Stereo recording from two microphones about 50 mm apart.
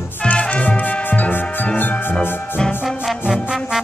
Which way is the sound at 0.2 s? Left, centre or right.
Left.